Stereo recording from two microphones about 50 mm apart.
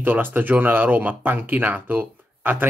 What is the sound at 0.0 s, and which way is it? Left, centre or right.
Speech, right.